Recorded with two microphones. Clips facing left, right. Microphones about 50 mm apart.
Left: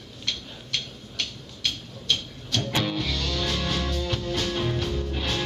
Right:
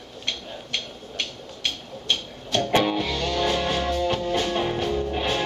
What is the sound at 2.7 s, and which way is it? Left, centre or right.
Music, right.